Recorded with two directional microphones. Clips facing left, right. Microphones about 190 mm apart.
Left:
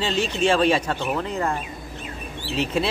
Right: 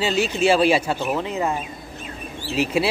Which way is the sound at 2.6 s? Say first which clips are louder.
Right 3 dB; 10° right (ahead or behind).